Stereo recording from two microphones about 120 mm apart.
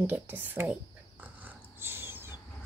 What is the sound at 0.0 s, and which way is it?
Speech, 15° right (ahead or behind).